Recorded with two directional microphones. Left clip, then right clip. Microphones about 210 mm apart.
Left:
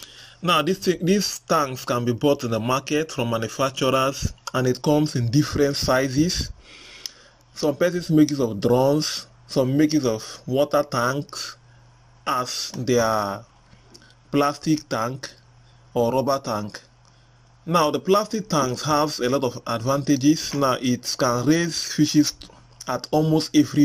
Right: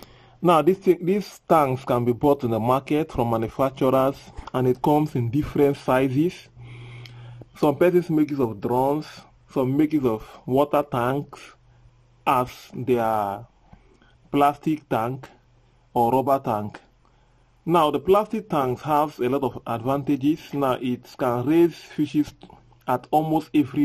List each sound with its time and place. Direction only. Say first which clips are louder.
0.4 s speech: right 3 dB; 20° right (ahead or behind)
7.6 s speech: right 3 dB; 10° right (ahead or behind)
17.6 s speech: right 1 dB; 15° right (ahead or behind)